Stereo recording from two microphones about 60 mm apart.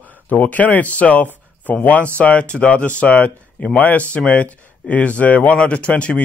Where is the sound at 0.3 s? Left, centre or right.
Left.